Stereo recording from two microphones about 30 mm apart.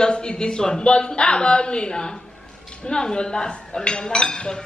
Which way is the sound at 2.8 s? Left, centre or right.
Left.